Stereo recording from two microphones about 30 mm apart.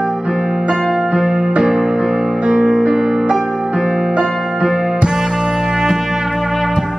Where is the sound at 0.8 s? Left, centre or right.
Centre.